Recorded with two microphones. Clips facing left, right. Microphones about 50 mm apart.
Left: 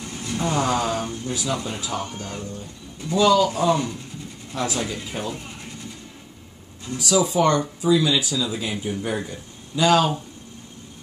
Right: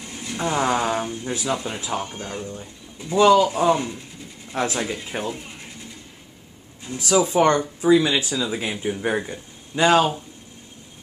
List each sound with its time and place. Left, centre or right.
0.0 s speech: centre
3.2 s speech: right
7.0 s speech: right